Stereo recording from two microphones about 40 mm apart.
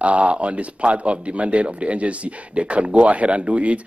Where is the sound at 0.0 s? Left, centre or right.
Right.